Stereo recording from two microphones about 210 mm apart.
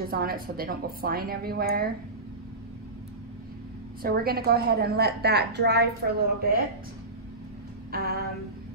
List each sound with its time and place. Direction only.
0.0 s a woman's voice: 45° right (ahead or behind)
4.0 s a woman's voice: 45° right (ahead or behind)
7.9 s a woman's voice: 50° right (ahead or behind)